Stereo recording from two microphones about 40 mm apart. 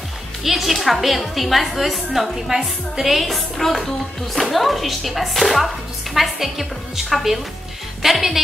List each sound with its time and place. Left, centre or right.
0.4 s a woman's voice: centre